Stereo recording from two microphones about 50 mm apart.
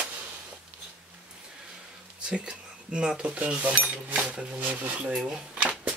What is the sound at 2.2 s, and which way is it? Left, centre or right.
Speech, right.